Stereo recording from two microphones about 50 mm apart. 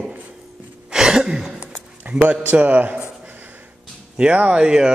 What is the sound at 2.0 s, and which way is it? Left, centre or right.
A man's voice, right.